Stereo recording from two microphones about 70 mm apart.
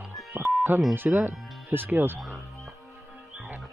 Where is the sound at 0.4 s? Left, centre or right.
Centre.